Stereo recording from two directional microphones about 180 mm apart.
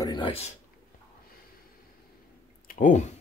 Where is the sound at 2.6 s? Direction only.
50° left (ahead or behind).